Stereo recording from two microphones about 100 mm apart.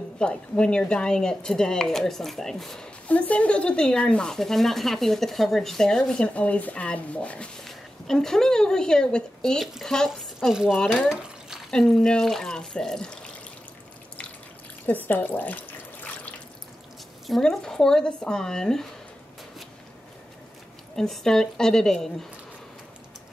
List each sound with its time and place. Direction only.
0.2 s speech: 10° left (ahead or behind)
14.9 s drip: 20° left (ahead or behind)
17.3 s speech: 5° left (ahead or behind)
20.9 s speech: 5° left (ahead or behind)